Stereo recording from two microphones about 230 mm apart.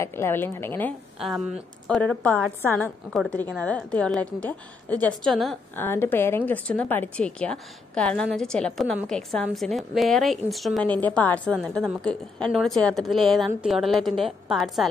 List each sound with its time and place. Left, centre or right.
0.0 s a woman's voice: centre